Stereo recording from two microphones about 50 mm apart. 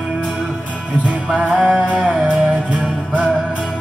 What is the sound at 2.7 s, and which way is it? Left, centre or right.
Music, right.